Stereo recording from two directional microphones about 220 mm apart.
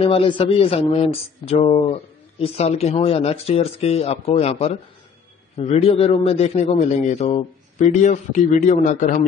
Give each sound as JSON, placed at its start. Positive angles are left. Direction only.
{"t": 0.0, "sound": "a man's voice", "side_deg": 25}